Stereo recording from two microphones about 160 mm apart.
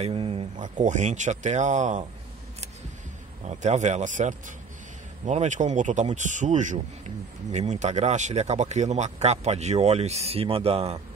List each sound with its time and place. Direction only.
0.0 s a man's voice: 35° right (ahead or behind)
3.4 s a man's voice: 45° right (ahead or behind)